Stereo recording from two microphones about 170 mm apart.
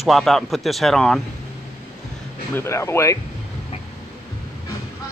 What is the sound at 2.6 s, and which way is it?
Speech, 15° left (ahead or behind).